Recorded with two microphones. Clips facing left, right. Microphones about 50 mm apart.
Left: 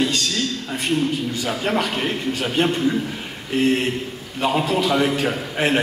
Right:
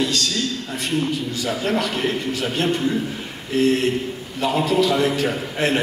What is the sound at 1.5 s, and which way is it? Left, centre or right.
A man's voice, centre.